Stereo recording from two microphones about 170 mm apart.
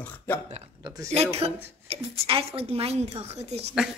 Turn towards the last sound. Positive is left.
turn(degrees=-40)  # may be behind; listen again after turning